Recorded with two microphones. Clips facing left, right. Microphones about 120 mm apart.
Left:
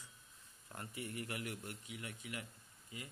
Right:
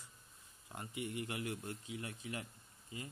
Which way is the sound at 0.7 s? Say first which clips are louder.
Right 3 dB; 20° right (ahead or behind).